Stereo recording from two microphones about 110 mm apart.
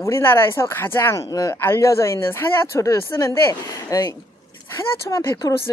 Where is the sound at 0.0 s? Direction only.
20° left (ahead or behind).